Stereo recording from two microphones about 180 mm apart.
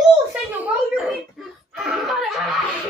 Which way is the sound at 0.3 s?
10° right (ahead or behind).